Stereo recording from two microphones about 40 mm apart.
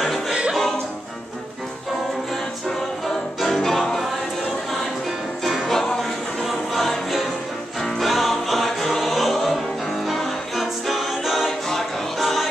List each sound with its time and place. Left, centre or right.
0.3 s music: right
3.3 s music: centre
5.4 s music: centre
5.7 s music: centre
6.4 s music: centre